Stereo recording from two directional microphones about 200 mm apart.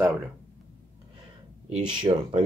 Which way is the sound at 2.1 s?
25° right (ahead or behind).